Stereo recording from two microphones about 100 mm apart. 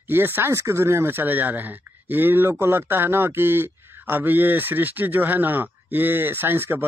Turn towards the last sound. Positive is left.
turn(degrees=-25)  # may be behind; listen again after turning